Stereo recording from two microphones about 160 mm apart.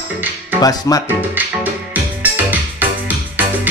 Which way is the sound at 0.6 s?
25° left (ahead or behind).